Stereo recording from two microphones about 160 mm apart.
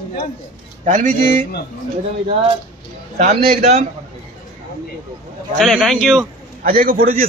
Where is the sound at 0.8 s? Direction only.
50° right (ahead or behind).